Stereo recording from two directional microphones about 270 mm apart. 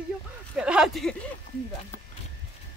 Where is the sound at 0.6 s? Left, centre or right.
Centre.